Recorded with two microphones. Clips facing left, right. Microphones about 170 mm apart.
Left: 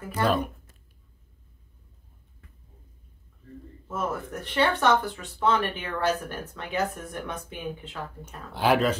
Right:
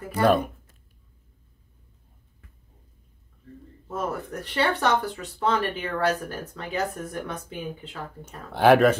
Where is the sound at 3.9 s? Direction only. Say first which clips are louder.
Right 1 dB; 40° right (ahead or behind).